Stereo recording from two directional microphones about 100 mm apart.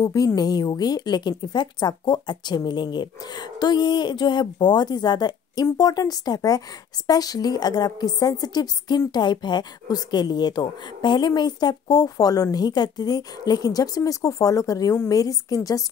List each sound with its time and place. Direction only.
0.0 s a woman's voice: 40° left (ahead or behind)